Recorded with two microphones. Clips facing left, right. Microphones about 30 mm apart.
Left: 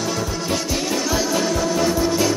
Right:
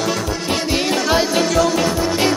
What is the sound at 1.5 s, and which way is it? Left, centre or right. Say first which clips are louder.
Music: right 3 dB; right.